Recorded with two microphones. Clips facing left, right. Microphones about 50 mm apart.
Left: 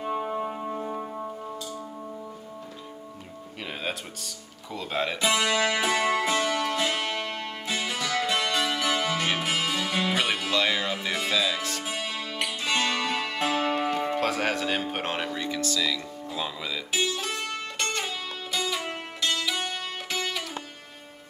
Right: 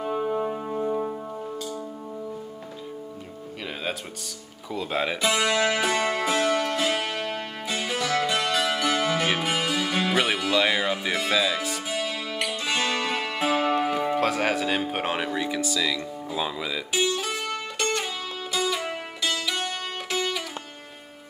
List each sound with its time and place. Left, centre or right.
0.0 s music: centre
4.7 s speech: centre
5.2 s music: centre
11.8 s music: centre